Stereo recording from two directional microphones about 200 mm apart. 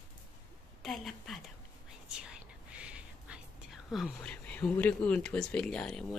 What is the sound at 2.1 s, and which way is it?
Whispering, 5° right (ahead or behind).